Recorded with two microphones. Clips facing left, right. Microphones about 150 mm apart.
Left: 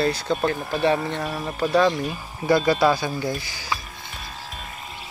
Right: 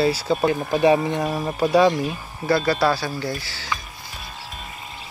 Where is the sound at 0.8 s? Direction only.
15° right (ahead or behind).